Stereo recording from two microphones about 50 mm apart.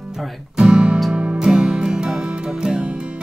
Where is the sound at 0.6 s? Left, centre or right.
Centre.